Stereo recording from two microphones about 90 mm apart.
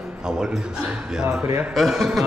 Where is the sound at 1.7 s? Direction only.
Centre (ahead or behind).